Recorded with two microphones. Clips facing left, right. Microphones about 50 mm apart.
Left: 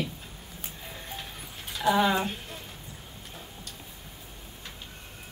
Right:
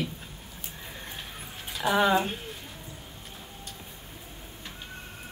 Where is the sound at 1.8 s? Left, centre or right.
Right.